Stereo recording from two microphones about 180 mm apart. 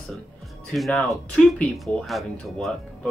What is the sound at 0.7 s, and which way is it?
Speech, centre (ahead or behind).